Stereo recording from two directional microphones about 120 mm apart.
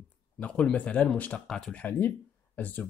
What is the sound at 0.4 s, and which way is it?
Speech, 10° left (ahead or behind).